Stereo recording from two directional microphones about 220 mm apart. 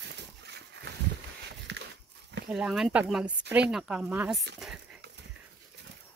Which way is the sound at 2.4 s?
5° right (ahead or behind).